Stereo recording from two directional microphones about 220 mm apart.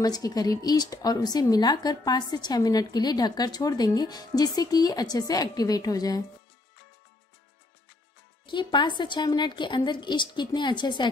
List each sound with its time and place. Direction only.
0.0 s speech: 15° left (ahead or behind)
8.5 s a woman's voice: 20° left (ahead or behind)